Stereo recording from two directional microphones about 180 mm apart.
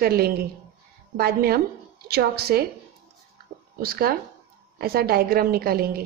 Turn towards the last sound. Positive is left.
turn(degrees=-55)  # may be behind; listen again after turning